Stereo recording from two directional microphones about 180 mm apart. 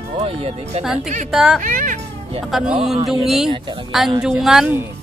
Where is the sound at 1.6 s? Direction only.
45° right (ahead or behind).